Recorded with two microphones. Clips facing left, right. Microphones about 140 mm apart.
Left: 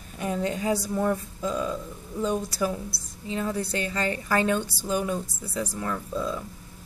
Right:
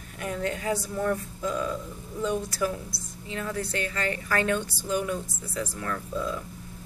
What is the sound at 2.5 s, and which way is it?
A woman's voice, 10° left (ahead or behind).